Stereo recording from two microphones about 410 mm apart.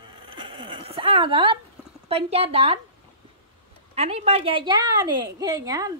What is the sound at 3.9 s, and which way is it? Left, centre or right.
A woman's voice, centre.